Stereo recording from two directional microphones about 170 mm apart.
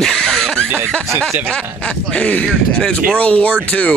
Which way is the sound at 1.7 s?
5° left (ahead or behind).